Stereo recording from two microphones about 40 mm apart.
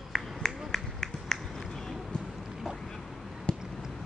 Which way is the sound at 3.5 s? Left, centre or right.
Left.